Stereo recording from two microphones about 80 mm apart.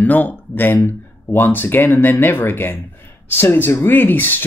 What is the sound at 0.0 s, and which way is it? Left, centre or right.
Speech, left.